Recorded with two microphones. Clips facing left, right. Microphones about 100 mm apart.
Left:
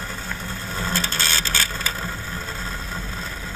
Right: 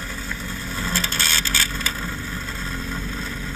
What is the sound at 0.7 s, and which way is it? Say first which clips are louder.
Vehicle: left 1 dB; 30° left (ahead or behind).